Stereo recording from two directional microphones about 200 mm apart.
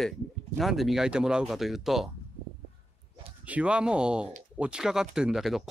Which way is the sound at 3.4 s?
5° right (ahead or behind).